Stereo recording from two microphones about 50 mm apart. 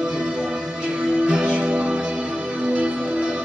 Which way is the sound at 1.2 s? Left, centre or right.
Right.